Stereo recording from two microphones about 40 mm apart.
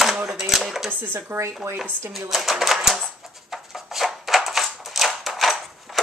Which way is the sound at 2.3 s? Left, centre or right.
Centre.